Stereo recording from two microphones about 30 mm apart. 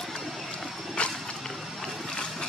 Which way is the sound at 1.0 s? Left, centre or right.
Left.